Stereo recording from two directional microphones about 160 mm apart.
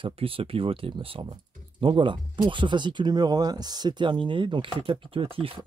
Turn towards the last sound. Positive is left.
turn(degrees=-35)  # may be behind; listen again after turning